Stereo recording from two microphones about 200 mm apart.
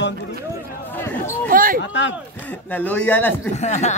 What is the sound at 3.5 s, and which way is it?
Speech, 35° left (ahead or behind).